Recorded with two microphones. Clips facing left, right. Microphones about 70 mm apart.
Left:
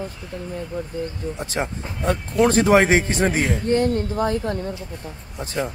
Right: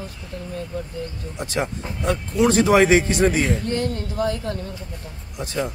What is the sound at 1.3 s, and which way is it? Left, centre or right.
Speech, left.